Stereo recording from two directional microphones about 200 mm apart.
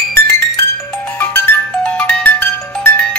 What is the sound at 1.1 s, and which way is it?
Music, 10° left (ahead or behind).